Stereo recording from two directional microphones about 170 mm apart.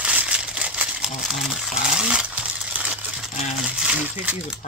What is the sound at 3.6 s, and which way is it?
Speech, 5° right (ahead or behind).